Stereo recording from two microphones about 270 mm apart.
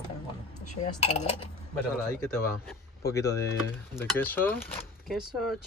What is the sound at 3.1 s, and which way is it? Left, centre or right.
Speech, centre.